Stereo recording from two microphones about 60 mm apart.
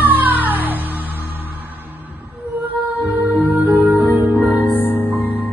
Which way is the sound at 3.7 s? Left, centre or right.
Right.